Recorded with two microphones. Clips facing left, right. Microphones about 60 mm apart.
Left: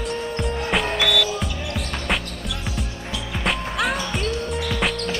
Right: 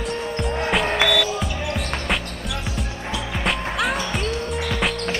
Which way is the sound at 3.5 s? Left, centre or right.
Centre.